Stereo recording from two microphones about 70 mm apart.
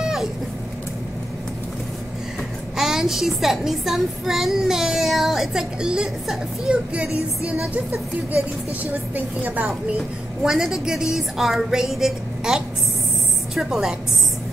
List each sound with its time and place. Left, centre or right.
0.0 s vehicle: centre
2.8 s speech: centre
9.1 s speech: right
10.4 s a woman's voice: centre